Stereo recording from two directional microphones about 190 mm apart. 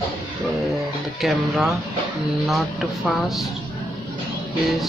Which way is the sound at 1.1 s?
Centre (ahead or behind).